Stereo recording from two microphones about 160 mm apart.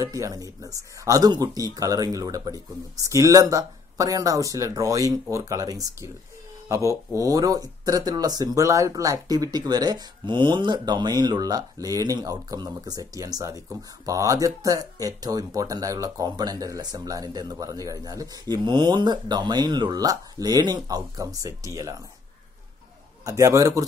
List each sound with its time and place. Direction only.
0.0 s speech: 20° right (ahead or behind)
23.2 s speech: 20° right (ahead or behind)